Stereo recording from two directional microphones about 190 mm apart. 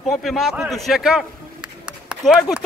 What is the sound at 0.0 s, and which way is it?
A man's voice, centre (ahead or behind).